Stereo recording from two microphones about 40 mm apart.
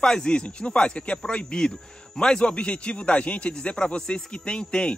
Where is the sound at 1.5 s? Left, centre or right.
Centre.